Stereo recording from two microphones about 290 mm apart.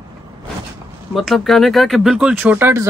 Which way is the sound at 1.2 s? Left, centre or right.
Centre.